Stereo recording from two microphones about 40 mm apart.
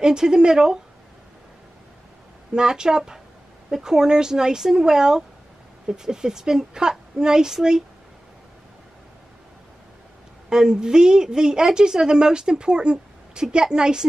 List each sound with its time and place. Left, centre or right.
0.0 s a woman's voice: centre
2.5 s a woman's voice: centre
10.5 s a woman's voice: centre